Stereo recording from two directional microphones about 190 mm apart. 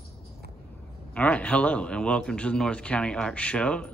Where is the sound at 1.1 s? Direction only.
5° left (ahead or behind).